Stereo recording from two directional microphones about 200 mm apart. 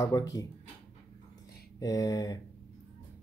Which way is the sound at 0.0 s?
20° left (ahead or behind).